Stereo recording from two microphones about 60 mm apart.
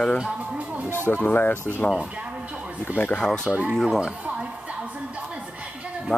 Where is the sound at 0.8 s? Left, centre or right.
Left.